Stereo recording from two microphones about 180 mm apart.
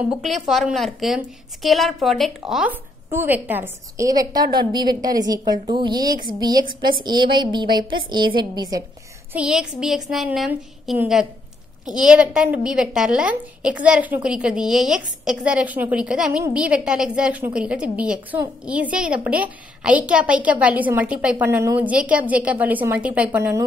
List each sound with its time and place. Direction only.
0.1 s a woman's voice: centre (ahead or behind); by 6.1 s 25° right (ahead or behind)
7.3 s speech: 25° right (ahead or behind)
9.3 s a woman's voice: 5° right (ahead or behind)